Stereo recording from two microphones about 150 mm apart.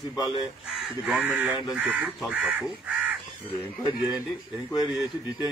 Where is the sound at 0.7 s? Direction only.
5° right (ahead or behind).